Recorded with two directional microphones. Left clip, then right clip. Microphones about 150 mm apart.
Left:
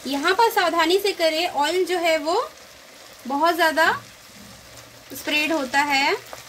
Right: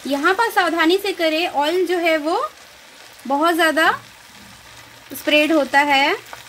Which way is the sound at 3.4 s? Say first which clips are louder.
Right 2 dB; 75° right (ahead or behind).